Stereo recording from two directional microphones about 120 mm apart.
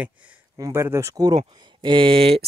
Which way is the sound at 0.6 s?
25° right (ahead or behind).